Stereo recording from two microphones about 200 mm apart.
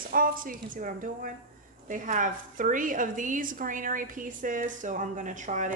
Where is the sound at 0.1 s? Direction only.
45° right (ahead or behind).